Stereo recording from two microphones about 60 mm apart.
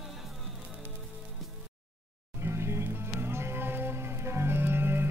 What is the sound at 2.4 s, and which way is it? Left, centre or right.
Music, right.